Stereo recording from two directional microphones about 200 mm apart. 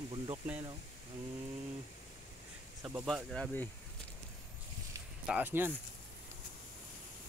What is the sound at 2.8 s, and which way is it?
Speech, 5° right (ahead or behind).